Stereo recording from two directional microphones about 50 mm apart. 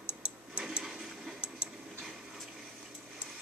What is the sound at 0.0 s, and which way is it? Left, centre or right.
Tick-tock, right.